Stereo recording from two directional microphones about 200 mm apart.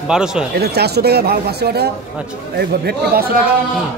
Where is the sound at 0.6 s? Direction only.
55° right (ahead or behind).